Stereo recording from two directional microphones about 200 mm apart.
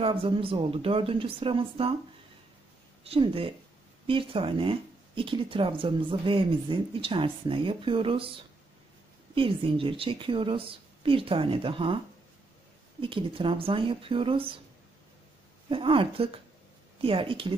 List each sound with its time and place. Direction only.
0.0 s speech: 25° right (ahead or behind)
3.0 s speech: 30° right (ahead or behind)
13.0 s speech: 25° right (ahead or behind)
15.7 s speech: 25° right (ahead or behind)